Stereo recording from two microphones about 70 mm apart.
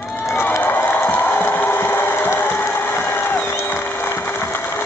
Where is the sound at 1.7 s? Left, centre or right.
Left.